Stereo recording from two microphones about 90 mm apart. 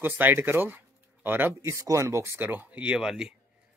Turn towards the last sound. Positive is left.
turn(degrees=-10)  # may be behind; listen again after turning